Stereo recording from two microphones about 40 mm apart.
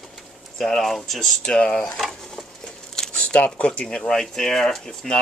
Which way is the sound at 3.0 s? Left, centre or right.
Centre.